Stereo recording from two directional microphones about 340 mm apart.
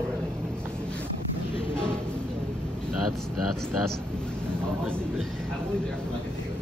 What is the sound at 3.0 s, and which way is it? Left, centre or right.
Speech, right.